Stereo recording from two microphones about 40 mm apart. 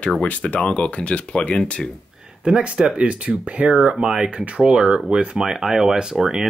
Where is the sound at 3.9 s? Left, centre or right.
Right.